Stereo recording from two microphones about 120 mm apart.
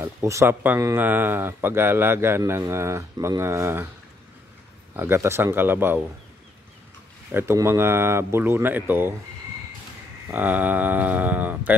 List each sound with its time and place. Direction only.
0.0 s speech: 20° right (ahead or behind)
4.9 s mantra: 20° right (ahead or behind)
7.3 s speech: 20° right (ahead or behind)
10.2 s mantra: 15° right (ahead or behind)